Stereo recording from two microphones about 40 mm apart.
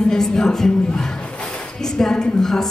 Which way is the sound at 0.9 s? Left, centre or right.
Centre.